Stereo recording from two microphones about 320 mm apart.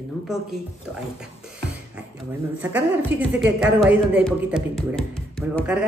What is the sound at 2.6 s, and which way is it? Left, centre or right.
Speech, centre.